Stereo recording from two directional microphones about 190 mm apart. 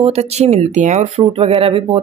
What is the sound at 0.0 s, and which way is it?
Speech, 35° right (ahead or behind).